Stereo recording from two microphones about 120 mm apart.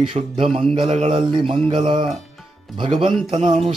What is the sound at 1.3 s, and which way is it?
Speech, 45° right (ahead or behind).